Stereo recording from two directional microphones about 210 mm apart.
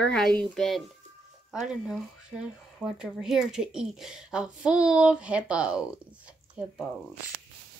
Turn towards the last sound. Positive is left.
turn(degrees=-5)  # may be behind; listen again after turning